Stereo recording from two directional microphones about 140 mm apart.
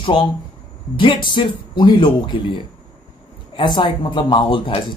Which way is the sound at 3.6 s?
35° left (ahead or behind).